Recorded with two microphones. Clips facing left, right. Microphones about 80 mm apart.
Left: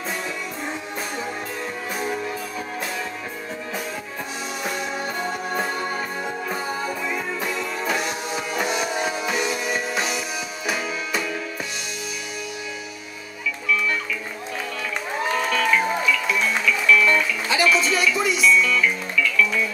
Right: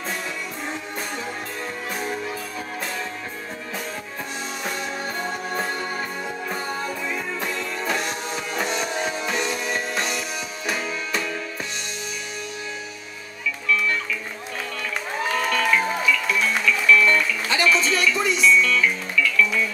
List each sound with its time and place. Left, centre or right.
2.0 s music: centre
4.6 s music: centre
15.2 s music: centre